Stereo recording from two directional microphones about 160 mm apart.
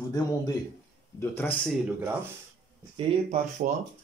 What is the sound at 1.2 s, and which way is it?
Speech, 15° left (ahead or behind).